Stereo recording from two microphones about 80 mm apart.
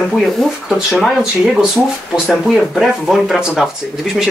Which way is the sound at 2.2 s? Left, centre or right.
Centre.